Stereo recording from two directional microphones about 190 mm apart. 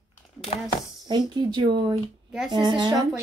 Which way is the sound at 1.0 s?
25° right (ahead or behind).